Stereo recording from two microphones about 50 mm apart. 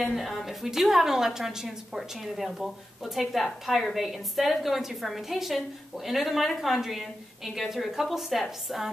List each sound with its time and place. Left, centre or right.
0.0 s a woman's voice: centre